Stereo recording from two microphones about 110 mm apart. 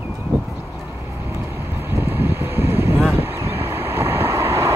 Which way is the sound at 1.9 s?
20° right (ahead or behind).